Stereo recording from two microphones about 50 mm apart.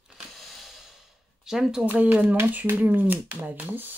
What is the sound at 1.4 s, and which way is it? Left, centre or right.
Speech, centre.